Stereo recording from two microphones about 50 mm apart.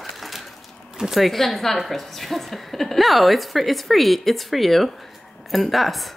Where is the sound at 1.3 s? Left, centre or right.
Centre.